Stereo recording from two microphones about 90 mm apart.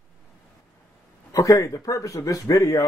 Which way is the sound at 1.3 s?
40° left (ahead or behind).